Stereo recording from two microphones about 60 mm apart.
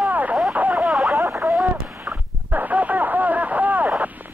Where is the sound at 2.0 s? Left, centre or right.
Right.